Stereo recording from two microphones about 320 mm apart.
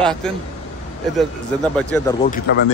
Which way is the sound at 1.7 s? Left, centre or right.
Centre.